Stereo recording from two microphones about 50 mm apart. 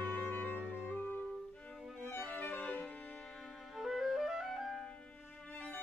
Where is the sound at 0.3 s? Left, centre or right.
Left.